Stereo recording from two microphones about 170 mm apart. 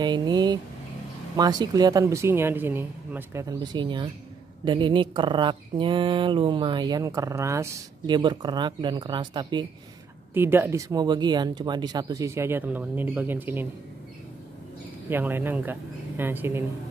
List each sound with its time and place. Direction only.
0.0 s speech: 25° right (ahead or behind)
10.3 s speech: 10° right (ahead or behind)
15.0 s speech: 10° right (ahead or behind)